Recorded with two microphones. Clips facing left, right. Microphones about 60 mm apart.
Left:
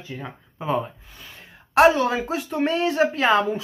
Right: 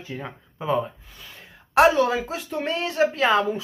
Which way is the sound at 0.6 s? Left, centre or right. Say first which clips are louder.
Right 1 dB; centre.